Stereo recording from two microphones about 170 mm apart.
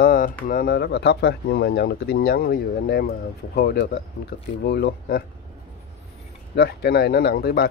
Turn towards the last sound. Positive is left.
turn(degrees=65)  # may be behind; listen again after turning